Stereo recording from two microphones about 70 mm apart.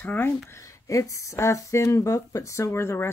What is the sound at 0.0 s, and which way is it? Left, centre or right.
Speech, left.